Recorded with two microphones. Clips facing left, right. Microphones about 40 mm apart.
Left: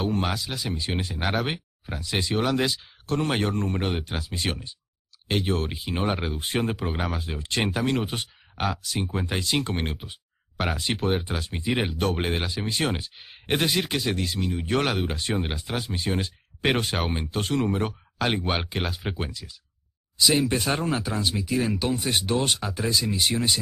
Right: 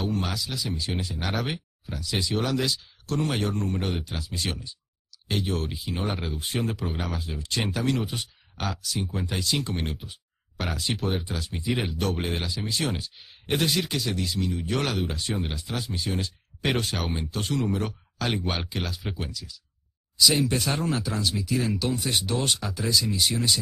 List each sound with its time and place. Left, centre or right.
0.0 s speech: left
6.6 s speech: left
8.5 s speech: left
8.8 s speech: left
18.4 s speech: left